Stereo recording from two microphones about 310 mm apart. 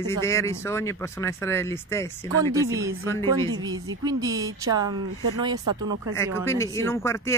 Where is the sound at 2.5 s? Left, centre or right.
Centre.